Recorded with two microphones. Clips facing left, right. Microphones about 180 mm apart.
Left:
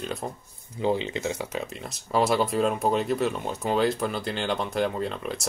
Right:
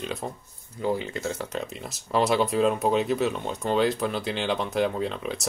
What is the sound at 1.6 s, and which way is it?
A man's voice, centre (ahead or behind).